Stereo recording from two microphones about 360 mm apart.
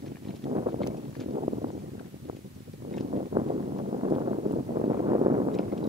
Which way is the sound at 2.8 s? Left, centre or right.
Centre.